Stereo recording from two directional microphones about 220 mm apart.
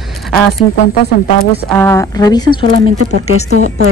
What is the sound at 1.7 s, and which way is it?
A woman's voice, 10° left (ahead or behind).